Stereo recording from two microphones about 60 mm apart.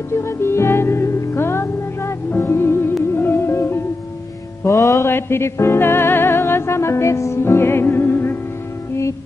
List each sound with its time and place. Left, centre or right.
0.1 s music: left
4.6 s music: left
5.0 s music: left